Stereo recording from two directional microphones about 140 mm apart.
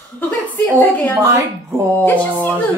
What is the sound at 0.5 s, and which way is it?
A woman's voice, 10° left (ahead or behind).